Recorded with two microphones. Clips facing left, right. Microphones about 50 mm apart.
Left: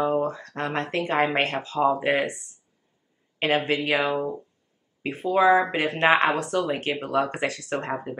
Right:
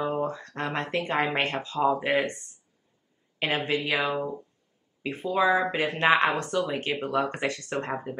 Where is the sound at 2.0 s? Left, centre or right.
Left.